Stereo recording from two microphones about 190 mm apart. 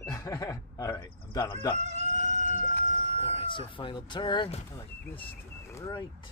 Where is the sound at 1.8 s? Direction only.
35° right (ahead or behind).